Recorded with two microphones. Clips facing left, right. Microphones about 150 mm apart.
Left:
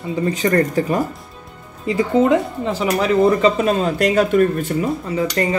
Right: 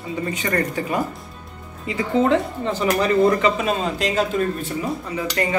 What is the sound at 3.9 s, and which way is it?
Speech, 60° left (ahead or behind).